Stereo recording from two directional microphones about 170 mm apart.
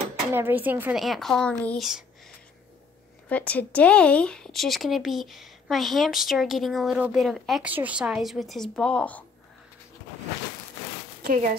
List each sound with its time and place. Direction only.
0.3 s speech: 10° right (ahead or behind)
3.3 s speech: 10° left (ahead or behind)
11.2 s speech: 50° right (ahead or behind)